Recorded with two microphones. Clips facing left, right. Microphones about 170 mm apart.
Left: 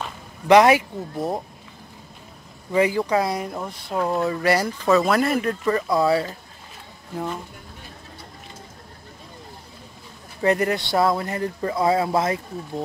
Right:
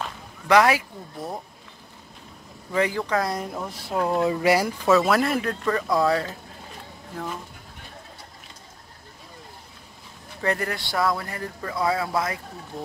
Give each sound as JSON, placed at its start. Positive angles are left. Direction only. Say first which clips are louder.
{"t": 0.5, "sound": "a man's voice", "louder": "left 4 dB", "side_deg": 20}
{"t": 2.7, "sound": "speech", "louder": "left 4 dB", "side_deg": 10}
{"t": 4.2, "sound": "speech", "louder": "right 2 dB", "side_deg": -15}
{"t": 10.4, "sound": "a man's voice", "louder": "left 6 dB", "side_deg": 20}